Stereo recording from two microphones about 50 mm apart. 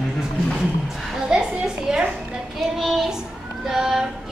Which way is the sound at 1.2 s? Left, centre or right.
Centre.